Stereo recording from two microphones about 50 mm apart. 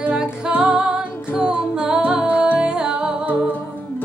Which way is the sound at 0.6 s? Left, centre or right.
Centre.